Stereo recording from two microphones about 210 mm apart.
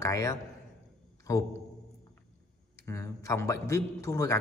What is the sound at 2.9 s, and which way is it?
Speech, 15° left (ahead or behind).